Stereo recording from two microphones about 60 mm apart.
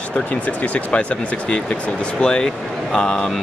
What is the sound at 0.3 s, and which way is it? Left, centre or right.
Speech, left.